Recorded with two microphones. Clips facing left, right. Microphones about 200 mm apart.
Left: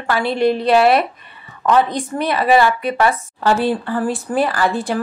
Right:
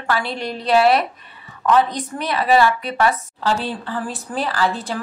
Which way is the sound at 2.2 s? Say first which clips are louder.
Left 4 dB; 50° left (ahead or behind).